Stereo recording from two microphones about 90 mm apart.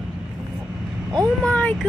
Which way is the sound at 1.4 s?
15° left (ahead or behind).